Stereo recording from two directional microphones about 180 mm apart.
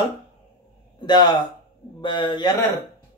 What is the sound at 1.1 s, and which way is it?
Speech, 25° left (ahead or behind).